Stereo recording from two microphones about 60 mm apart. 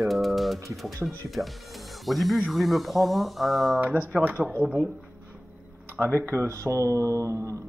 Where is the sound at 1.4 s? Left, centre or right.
Right.